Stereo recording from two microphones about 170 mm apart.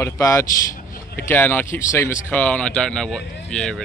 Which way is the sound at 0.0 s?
15° left (ahead or behind).